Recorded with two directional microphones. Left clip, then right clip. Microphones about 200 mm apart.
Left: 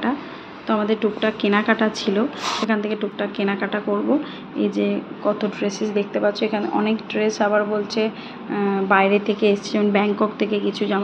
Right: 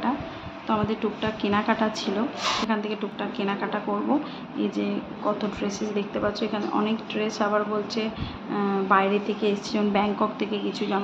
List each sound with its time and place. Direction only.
0.7 s speech: 15° left (ahead or behind)